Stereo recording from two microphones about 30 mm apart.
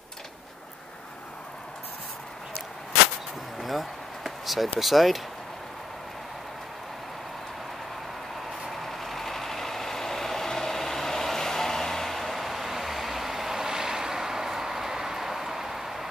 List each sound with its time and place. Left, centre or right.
3.6 s speech: centre
8.7 s vehicle: centre